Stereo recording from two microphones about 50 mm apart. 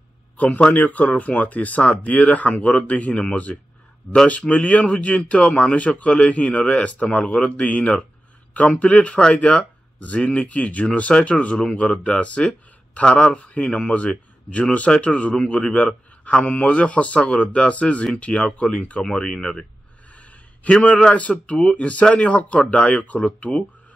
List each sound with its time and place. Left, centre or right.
0.7 s speech: left; by 19.6 s centre
20.1 s a sound: left
20.7 s speech: left